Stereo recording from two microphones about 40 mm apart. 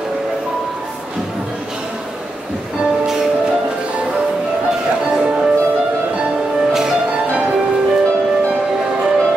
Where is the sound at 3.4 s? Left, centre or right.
Right.